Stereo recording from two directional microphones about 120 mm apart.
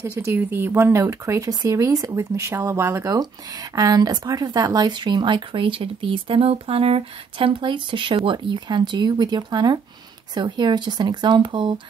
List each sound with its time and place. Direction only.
0.0 s speech: 20° right (ahead or behind); by 11.7 s 40° right (ahead or behind)